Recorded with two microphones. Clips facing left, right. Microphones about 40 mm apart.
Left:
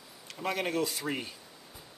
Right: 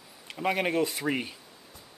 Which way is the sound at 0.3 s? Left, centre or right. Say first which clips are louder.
Right 5 dB; right.